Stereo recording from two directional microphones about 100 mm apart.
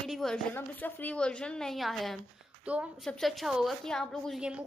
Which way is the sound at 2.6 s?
15° right (ahead or behind).